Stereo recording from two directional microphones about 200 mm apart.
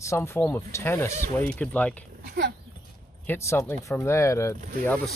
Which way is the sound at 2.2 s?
45° right (ahead or behind).